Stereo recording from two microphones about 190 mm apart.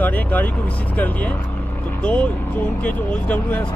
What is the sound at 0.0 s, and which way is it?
Speech, 10° left (ahead or behind).